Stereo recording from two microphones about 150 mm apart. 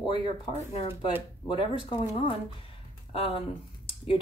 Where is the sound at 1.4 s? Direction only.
35° left (ahead or behind).